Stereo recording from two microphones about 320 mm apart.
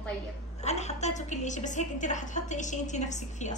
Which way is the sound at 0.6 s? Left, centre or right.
Left.